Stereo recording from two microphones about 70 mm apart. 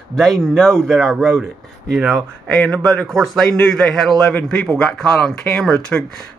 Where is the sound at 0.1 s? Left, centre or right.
Centre.